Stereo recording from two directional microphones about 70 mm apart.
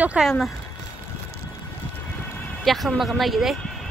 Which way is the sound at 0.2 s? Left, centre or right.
Centre.